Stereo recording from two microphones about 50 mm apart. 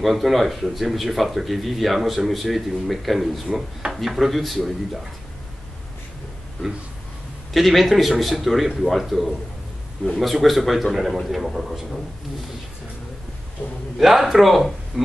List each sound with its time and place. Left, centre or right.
0.0 s speech: centre
7.5 s speech: centre
13.9 s speech: centre